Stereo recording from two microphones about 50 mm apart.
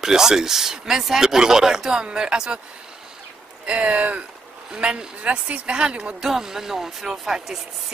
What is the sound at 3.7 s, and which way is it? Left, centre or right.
Speech, right.